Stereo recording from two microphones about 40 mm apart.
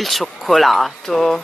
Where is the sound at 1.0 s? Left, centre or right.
Centre.